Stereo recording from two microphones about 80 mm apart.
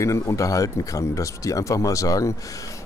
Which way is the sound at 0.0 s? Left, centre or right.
Left.